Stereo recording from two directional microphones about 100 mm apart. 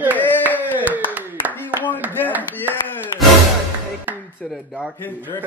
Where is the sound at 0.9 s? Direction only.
15° right (ahead or behind).